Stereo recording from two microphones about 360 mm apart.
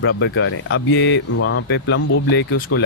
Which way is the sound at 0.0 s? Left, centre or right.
Left.